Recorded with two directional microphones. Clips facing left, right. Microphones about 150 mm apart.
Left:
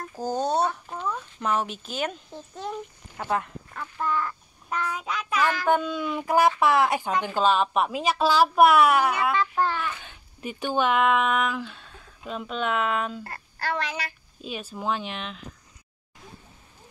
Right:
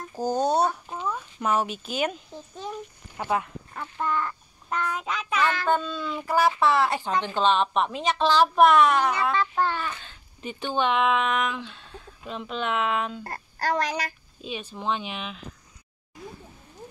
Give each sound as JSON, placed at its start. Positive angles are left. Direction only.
{"t": 0.1, "sound": "child singing", "side_deg": -10}
{"t": 6.6, "sound": "a woman's voice", "side_deg": 15}
{"t": 13.2, "sound": "a child's voice", "side_deg": -40}
{"t": 14.4, "sound": "child singing", "side_deg": 0}